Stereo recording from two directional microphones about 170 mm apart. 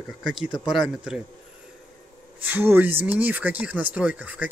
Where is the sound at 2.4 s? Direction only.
10° right (ahead or behind).